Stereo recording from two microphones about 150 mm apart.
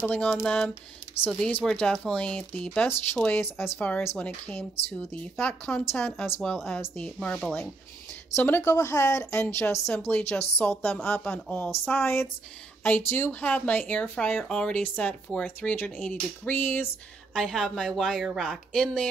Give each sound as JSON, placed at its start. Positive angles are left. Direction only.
{"t": 0.0, "sound": "speech", "side_deg": 10}
{"t": 8.4, "sound": "speech", "side_deg": 15}
{"t": 17.3, "sound": "speech", "side_deg": 5}